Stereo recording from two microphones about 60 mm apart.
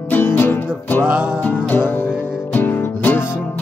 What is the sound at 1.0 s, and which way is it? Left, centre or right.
Music, centre.